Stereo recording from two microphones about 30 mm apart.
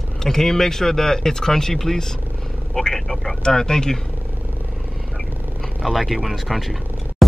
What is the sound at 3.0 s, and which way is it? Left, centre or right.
Speech, centre.